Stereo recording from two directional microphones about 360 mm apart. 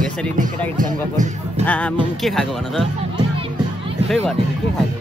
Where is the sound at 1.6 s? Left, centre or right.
Centre.